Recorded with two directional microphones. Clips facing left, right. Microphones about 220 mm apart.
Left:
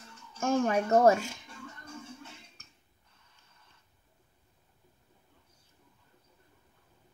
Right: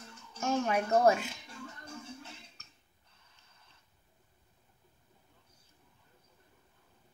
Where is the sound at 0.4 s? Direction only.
45° left (ahead or behind).